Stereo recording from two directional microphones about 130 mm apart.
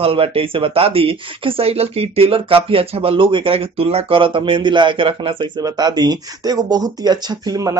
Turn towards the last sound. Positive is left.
turn(degrees=-25)  # may be behind; listen again after turning